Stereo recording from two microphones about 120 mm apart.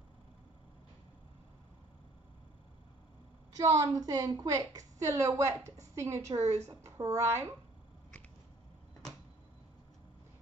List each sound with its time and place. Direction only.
3.5 s a woman's voice: 30° right (ahead or behind)